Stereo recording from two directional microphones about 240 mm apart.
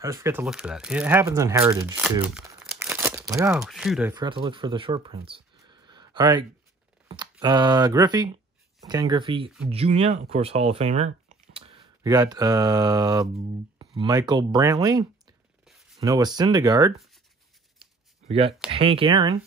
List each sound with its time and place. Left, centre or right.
0.0 s speech: centre
2.3 s crumpling: centre
3.6 s speech: centre
4.1 s speech: centre
17.7 s a sound: right
18.7 s speech: right